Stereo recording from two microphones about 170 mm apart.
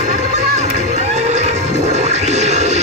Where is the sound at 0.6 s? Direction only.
45° right (ahead or behind).